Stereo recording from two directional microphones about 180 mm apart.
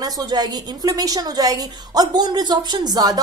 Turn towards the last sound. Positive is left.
turn(degrees=-20)  # may be behind; listen again after turning